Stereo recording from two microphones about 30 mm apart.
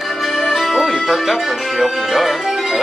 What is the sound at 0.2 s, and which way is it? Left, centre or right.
Music, centre.